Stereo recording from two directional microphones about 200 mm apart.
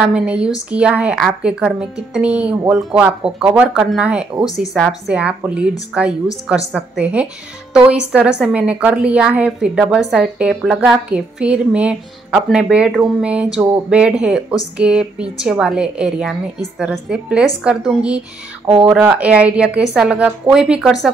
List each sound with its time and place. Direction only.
0.1 s a woman's voice: 5° right (ahead or behind)